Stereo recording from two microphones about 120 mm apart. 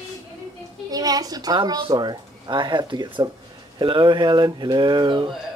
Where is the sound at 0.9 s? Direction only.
30° right (ahead or behind).